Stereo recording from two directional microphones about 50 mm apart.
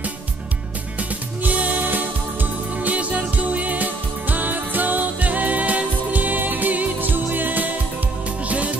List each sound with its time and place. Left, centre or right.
1.4 s music: right